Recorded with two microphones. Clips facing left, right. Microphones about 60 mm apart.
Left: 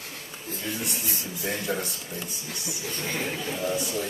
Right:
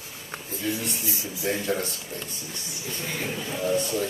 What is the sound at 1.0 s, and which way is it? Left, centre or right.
Speech, left.